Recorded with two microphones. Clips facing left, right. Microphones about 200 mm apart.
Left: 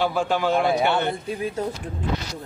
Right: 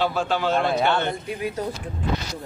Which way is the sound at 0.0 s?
15° left (ahead or behind).